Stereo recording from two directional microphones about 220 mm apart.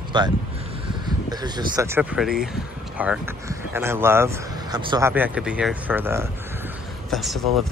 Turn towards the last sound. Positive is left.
turn(degrees=0)  # may be behind; listen again after turning